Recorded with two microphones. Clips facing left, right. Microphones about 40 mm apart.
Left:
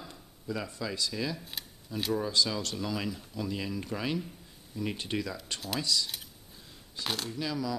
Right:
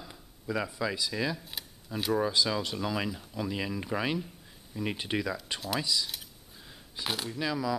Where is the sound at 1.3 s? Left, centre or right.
Centre.